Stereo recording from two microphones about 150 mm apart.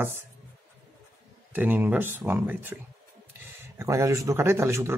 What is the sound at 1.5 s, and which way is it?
Speech, 10° right (ahead or behind).